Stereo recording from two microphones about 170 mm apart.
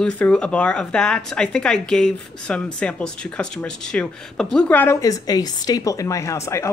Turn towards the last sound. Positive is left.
turn(degrees=15)  # may be behind; listen again after turning